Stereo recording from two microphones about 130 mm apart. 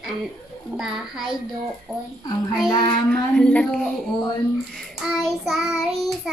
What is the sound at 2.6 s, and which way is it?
Child singing, 35° left (ahead or behind).